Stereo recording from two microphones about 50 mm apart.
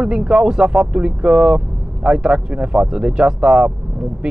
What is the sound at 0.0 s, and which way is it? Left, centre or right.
Speech, centre.